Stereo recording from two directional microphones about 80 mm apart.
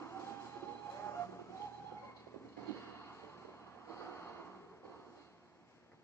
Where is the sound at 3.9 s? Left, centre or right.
Left.